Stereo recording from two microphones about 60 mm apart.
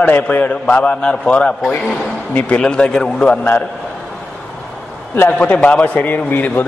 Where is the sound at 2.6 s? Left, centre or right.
Centre.